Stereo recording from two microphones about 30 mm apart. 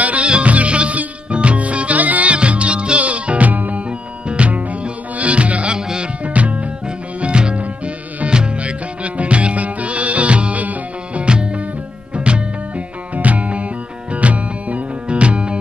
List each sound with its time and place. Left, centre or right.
0.0 s music: right
2.3 s music: right
3.0 s music: right
4.4 s music: right
5.7 s music: right
6.2 s music: right
7.2 s music: right
9.0 s music: right
10.6 s music: right
11.2 s music: right
13.1 s music: right
15.0 s music: right